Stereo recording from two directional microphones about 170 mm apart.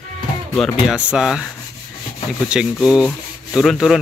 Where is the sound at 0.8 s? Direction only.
5° right (ahead or behind).